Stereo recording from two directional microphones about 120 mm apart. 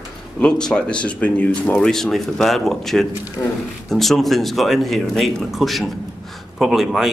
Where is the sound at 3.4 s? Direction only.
25° left (ahead or behind).